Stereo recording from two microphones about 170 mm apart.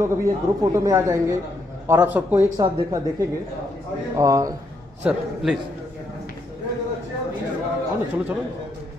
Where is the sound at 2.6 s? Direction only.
25° right (ahead or behind).